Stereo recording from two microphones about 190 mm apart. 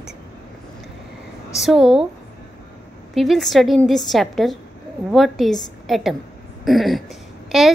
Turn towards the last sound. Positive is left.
turn(degrees=0)  # may be behind; listen again after turning